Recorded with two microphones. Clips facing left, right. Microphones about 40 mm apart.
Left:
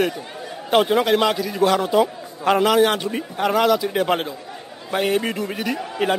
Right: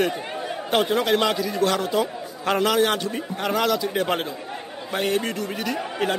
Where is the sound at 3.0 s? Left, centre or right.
Centre.